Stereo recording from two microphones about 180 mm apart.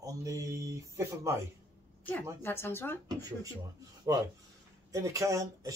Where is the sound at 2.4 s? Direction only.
10° left (ahead or behind).